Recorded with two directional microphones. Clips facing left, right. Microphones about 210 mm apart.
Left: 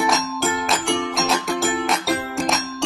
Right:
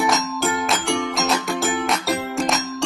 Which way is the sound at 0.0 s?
Centre (ahead or behind).